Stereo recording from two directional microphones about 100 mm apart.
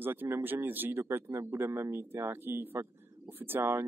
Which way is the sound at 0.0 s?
20° right (ahead or behind).